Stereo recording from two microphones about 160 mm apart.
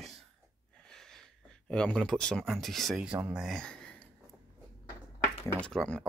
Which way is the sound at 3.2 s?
Centre (ahead or behind).